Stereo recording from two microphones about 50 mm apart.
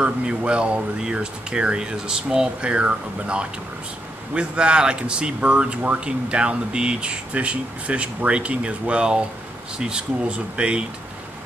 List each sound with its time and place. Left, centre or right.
0.0 s speech: right